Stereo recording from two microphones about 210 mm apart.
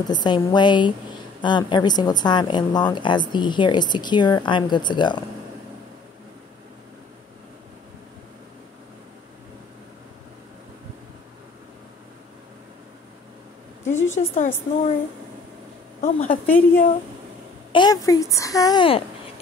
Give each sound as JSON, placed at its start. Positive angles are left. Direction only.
{"t": 0.0, "sound": "a woman's voice", "side_deg": 20}
{"t": 14.1, "sound": "a woman's voice", "side_deg": 35}
{"t": 16.0, "sound": "a woman's voice", "side_deg": 40}
{"t": 16.4, "sound": "a woman's voice", "side_deg": 10}
{"t": 17.7, "sound": "a woman's voice", "side_deg": 20}